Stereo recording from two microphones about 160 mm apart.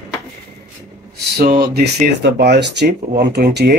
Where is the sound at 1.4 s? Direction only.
75° right (ahead or behind).